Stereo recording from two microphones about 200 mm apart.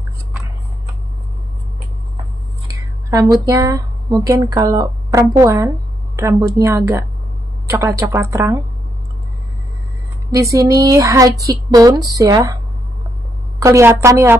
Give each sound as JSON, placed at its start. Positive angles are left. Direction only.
{"t": 3.1, "sound": "speech", "side_deg": -15}
{"t": 10.3, "sound": "speech", "side_deg": -15}
{"t": 13.6, "sound": "speech", "side_deg": -15}